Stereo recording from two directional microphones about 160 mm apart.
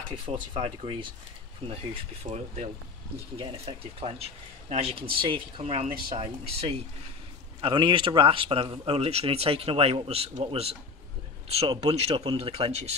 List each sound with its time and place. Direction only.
0.1 s speech: 35° right (ahead or behind)